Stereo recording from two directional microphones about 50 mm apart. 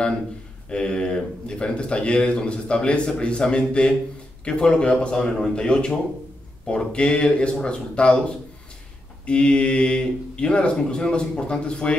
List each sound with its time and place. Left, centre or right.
0.7 s speech: centre
9.2 s speech: left